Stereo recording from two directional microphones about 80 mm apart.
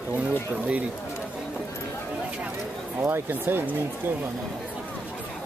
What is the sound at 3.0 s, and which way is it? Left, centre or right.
Speech, right.